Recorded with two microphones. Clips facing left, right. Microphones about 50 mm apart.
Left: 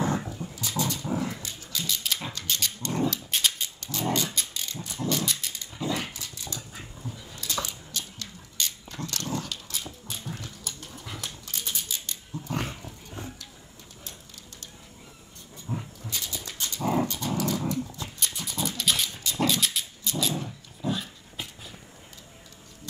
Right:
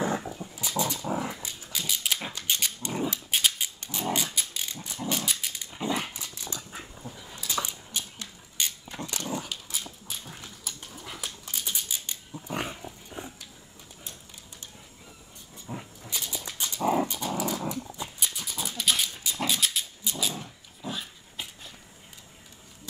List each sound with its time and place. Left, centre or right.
0.3 s dog: centre
4.3 s mechanisms: centre
5.0 s dog: centre
5.8 s dog: right; by 10.4 s centre
10.6 s a sound: centre
12.4 s dog: centre
12.7 s roaring cats: centre
15.7 s dog: centre